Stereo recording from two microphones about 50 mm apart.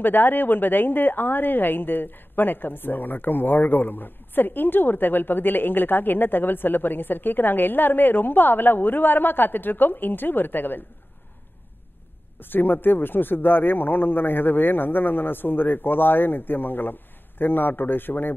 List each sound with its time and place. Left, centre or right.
0.0 s a woman's voice: left
12.4 s a woman's voice: left